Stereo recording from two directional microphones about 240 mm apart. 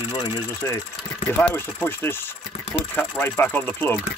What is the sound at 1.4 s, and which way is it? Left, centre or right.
Speech, centre.